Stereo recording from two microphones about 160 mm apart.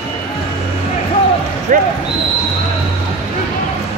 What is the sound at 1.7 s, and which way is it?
Speech, 55° right (ahead or behind).